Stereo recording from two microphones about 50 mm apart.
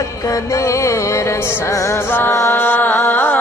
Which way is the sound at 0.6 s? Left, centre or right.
Left.